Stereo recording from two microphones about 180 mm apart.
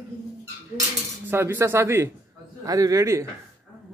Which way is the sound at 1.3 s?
15° right (ahead or behind).